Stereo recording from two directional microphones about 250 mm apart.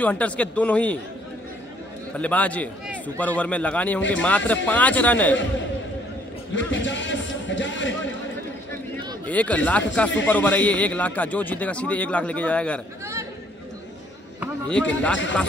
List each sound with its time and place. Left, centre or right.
0.0 s a man's voice: centre
2.1 s a man's voice: centre
6.5 s music: left
9.2 s a man's voice: centre
14.7 s a man's voice: centre